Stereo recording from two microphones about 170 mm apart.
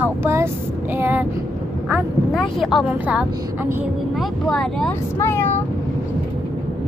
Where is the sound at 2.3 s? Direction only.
Centre (ahead or behind).